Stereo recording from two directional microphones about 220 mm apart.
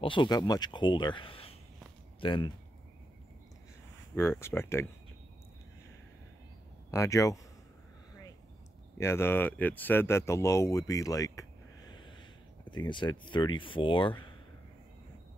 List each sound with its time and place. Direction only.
0.0 s speech: 20° left (ahead or behind)
4.1 s speech: 10° left (ahead or behind)
6.9 s speech: 15° left (ahead or behind)
8.9 s speech: 10° left (ahead or behind)
12.6 s speech: 20° left (ahead or behind)